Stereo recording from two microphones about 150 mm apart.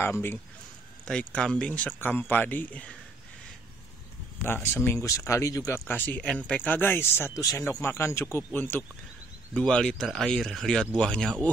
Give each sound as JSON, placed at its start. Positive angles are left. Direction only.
{"t": 0.0, "sound": "speech", "side_deg": 15}
{"t": 1.0, "sound": "speech", "side_deg": 5}
{"t": 4.7, "sound": "speech", "side_deg": 20}
{"t": 5.9, "sound": "speech", "side_deg": 10}